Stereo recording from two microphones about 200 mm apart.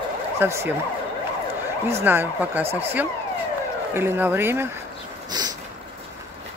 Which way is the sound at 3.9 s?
10° right (ahead or behind).